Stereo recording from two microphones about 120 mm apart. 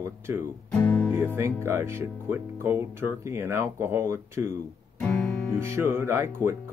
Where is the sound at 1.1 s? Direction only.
20° right (ahead or behind).